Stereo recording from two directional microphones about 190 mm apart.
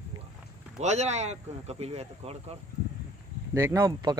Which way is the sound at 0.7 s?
35° right (ahead or behind).